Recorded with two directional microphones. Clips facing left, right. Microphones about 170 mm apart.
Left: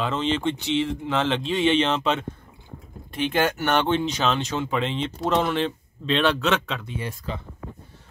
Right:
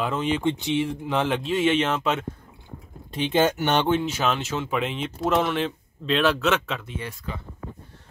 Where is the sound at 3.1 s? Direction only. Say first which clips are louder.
Right 2 dB; 20° right (ahead or behind).